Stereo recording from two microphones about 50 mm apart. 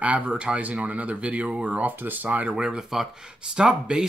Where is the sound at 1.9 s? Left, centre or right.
Right.